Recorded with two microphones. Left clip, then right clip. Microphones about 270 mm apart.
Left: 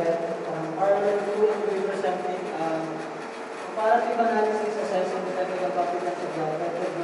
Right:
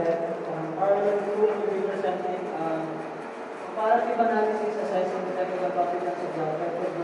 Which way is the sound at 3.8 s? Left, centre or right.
Centre.